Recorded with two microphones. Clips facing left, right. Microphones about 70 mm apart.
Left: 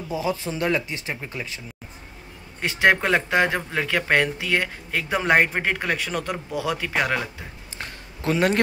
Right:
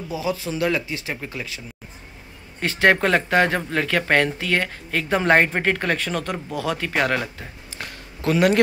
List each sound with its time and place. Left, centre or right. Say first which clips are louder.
0.1 s speech: even; left
2.6 s speech: right 2 dB; centre
7.7 s a sound: right 1 dB; left